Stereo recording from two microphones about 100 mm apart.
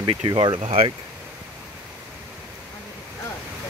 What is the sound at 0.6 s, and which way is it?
Speech, 70° right (ahead or behind).